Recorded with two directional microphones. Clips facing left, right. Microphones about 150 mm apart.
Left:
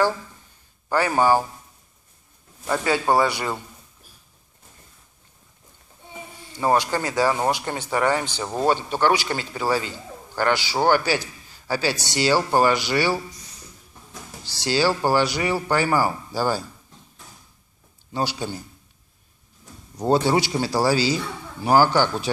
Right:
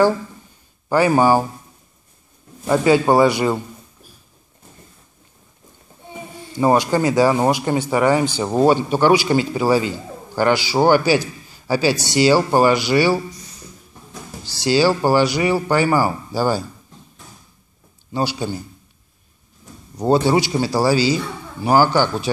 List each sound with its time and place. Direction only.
0.8 s speech: 15° right (ahead or behind)
2.6 s speech: 15° right (ahead or behind)
6.6 s speech: 15° right (ahead or behind)
14.4 s speech: 10° right (ahead or behind)
18.1 s speech: 10° right (ahead or behind)
20.1 s speech: 10° right (ahead or behind)